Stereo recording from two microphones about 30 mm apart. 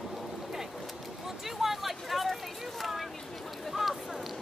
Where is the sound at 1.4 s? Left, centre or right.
Centre.